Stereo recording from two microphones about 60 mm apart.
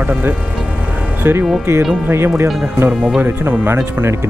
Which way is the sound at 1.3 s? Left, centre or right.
Right.